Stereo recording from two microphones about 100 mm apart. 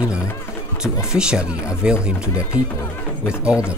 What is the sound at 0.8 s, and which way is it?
Speech, 10° right (ahead or behind).